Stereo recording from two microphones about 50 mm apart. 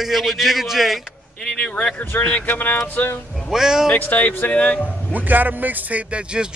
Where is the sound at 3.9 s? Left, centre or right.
Left.